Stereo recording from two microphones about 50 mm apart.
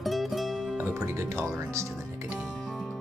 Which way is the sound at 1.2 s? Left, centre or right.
Right.